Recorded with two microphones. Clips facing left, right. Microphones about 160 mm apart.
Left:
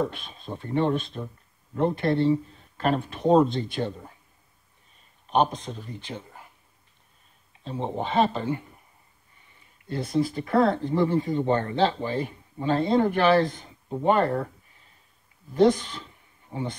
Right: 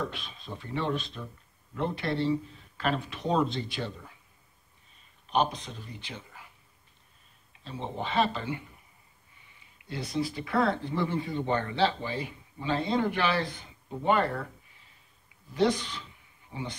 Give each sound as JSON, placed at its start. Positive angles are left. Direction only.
{"t": 0.1, "sound": "speech", "side_deg": 50}
{"t": 5.3, "sound": "a man's voice", "side_deg": 50}
{"t": 7.6, "sound": "speech", "side_deg": 50}
{"t": 9.8, "sound": "speech", "side_deg": 50}
{"t": 15.5, "sound": "speech", "side_deg": 45}